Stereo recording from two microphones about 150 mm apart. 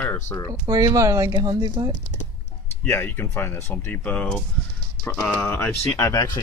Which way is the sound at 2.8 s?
15° left (ahead or behind).